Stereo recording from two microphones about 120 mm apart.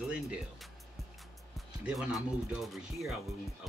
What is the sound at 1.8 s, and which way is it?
Speech, 5° right (ahead or behind).